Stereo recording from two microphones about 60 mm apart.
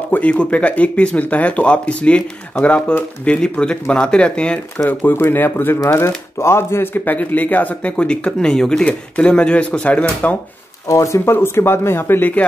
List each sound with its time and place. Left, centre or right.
0.1 s speech: left
4.8 s speech: left
5.9 s speech: left
10.9 s speech: left